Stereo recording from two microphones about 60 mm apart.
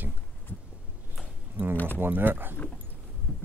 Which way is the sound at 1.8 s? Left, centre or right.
Right.